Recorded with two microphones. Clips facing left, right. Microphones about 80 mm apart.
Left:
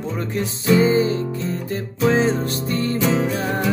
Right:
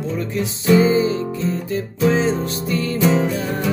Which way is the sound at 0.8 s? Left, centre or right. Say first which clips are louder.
Right 1 dB; left.